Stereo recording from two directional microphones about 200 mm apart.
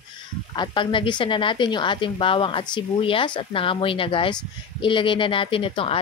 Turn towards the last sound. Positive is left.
turn(degrees=25)  # may be behind; listen again after turning